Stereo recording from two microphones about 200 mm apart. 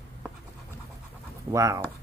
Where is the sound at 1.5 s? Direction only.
15° right (ahead or behind).